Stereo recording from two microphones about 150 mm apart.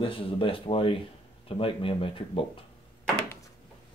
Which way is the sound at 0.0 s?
35° left (ahead or behind).